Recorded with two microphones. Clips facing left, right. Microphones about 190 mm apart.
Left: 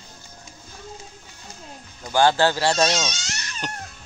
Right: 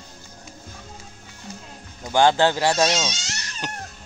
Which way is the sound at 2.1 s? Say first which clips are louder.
Right 1 dB; 20° right (ahead or behind).